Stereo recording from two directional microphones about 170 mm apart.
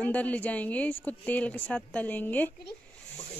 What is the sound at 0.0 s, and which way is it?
A woman's voice, 10° left (ahead or behind).